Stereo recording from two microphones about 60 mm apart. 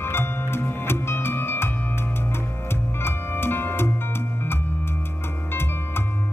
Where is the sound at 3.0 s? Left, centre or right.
Left.